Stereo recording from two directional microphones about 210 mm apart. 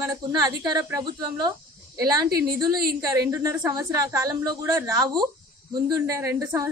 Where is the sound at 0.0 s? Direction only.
15° right (ahead or behind).